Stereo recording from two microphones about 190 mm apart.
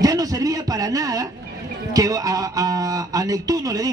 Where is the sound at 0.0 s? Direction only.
20° right (ahead or behind).